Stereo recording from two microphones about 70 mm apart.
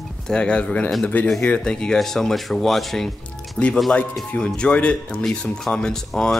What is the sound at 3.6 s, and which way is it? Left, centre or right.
Speech, centre.